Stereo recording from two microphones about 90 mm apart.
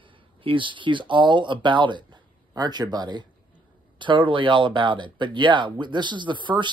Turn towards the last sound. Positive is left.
turn(degrees=-60)  # may be behind; listen again after turning